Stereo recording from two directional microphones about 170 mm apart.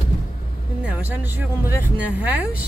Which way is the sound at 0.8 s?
10° right (ahead or behind).